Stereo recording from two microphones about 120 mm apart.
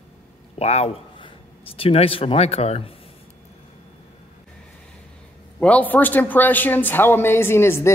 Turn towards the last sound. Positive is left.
turn(degrees=20)  # may be behind; listen again after turning